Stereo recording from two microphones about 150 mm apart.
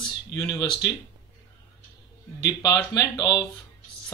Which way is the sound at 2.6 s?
25° left (ahead or behind).